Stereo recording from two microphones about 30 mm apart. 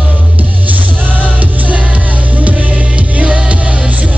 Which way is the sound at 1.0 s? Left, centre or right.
Right.